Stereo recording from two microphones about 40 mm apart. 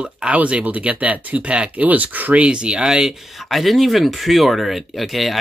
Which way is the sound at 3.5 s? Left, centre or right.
Centre.